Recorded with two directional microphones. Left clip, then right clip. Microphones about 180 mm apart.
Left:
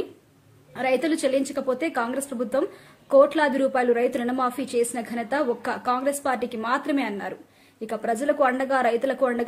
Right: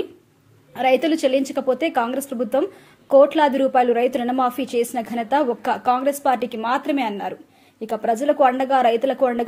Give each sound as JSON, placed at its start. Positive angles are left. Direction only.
{"t": 0.7, "sound": "a woman's voice", "side_deg": -20}